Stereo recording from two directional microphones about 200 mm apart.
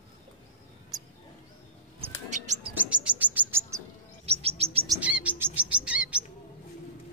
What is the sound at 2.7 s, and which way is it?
Bird, 5° right (ahead or behind).